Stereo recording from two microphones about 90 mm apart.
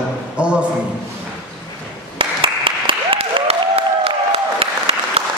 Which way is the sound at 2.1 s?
75° right (ahead or behind).